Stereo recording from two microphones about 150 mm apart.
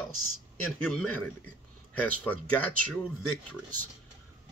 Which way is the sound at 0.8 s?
10° left (ahead or behind).